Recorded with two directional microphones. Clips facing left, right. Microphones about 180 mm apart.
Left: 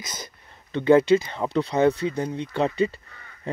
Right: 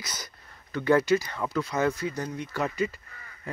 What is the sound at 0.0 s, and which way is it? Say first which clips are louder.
Speech: left 3 dB; 25° left (ahead or behind).